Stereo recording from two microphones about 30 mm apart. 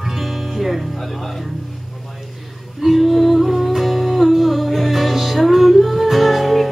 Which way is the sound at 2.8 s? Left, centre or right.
Centre.